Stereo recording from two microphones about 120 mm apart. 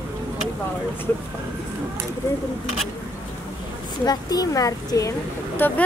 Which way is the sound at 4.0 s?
35° left (ahead or behind).